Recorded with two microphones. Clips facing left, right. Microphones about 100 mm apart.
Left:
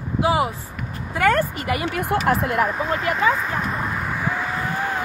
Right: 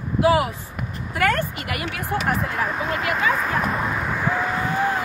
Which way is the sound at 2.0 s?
65° left (ahead or behind).